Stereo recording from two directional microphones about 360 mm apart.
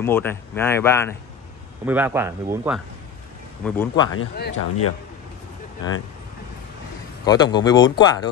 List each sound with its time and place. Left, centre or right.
0.0 s speech: centre
1.9 s speech: centre
3.6 s speech: centre
4.1 s speech: left
7.2 s speech: centre